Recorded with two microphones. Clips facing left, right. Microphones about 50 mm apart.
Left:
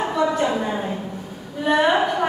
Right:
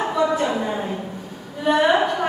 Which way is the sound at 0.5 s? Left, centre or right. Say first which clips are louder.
Even; centre.